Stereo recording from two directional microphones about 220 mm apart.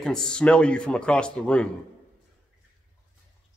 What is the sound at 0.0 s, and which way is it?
Speech, 5° left (ahead or behind).